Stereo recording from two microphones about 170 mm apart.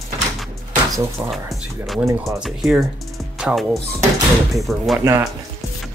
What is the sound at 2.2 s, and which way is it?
Speech, centre (ahead or behind).